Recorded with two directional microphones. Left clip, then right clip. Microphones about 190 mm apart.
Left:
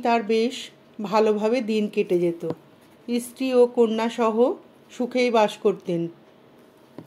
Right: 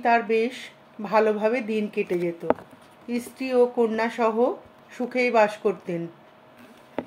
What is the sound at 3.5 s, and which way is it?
Speech, 30° left (ahead or behind).